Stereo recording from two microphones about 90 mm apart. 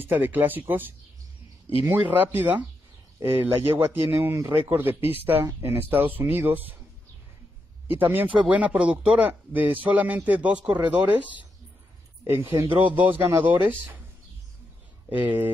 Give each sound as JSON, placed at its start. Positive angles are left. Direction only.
{"t": 0.0, "sound": "speech", "side_deg": -20}
{"t": 7.9, "sound": "speech", "side_deg": -20}
{"t": 15.0, "sound": "speech", "side_deg": -20}